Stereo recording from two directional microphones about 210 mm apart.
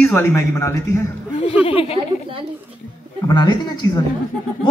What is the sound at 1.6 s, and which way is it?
Speech, 25° left (ahead or behind).